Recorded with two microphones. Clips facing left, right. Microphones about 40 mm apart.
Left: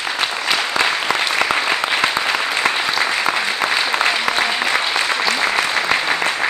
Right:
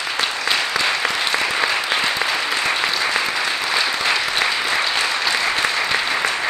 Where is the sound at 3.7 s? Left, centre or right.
Left.